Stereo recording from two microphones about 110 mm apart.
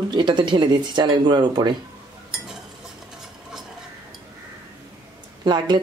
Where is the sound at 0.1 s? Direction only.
45° right (ahead or behind).